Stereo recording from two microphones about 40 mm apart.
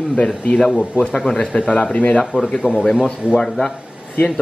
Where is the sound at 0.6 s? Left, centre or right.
Right.